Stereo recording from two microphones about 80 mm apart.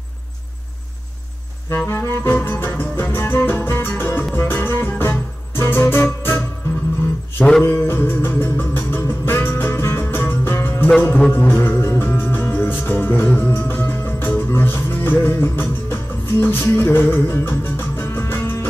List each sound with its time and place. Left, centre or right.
1.7 s music: left
7.6 s music: left